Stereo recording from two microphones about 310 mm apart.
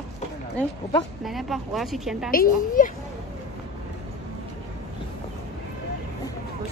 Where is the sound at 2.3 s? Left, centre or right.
Left.